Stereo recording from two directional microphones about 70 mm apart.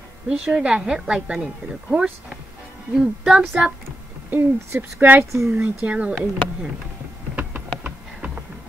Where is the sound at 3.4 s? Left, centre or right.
Centre.